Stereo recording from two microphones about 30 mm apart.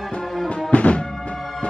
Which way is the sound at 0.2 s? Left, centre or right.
Centre.